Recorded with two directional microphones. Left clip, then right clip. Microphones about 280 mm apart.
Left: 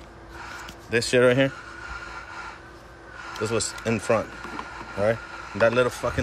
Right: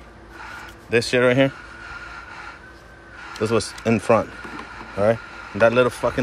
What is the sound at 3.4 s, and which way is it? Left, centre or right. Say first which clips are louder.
Speech: right 5 dB; centre.